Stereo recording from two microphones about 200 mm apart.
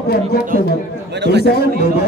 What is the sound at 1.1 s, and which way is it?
Speech, 55° right (ahead or behind).